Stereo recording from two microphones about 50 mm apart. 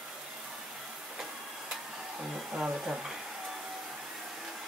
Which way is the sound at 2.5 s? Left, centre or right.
Centre.